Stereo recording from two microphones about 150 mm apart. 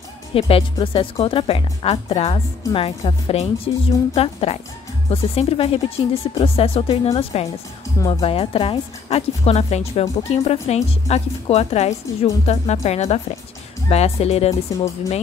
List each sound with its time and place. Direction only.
0.3 s speech: 40° left (ahead or behind)